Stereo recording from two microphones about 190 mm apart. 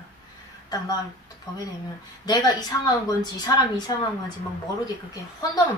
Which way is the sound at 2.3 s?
20° left (ahead or behind).